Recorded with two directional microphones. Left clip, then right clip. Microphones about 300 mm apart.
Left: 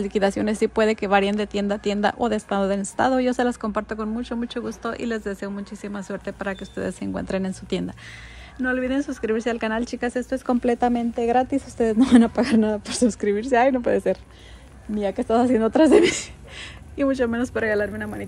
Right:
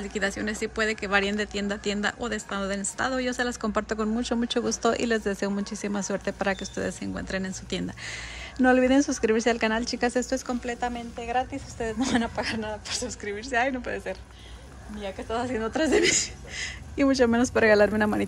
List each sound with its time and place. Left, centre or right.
0.0 s speech: centre